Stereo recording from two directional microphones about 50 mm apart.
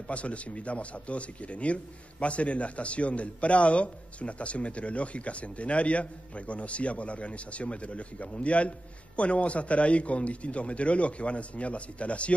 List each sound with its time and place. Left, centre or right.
0.1 s speech: left